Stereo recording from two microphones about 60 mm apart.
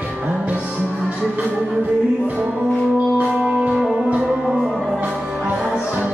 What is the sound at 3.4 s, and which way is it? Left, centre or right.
Music, centre.